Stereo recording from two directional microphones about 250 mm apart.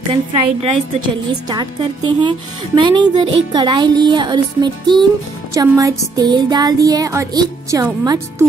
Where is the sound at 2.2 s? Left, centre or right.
Centre.